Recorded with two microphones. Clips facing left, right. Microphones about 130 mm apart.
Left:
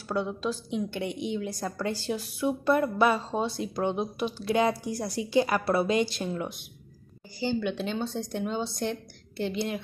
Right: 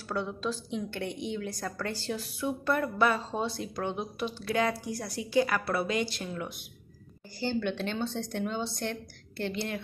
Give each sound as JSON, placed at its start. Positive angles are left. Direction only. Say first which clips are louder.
{"t": 0.1, "sound": "a woman's voice", "louder": "left 3 dB", "side_deg": 15}
{"t": 7.3, "sound": "speech", "louder": "left 2 dB", "side_deg": 10}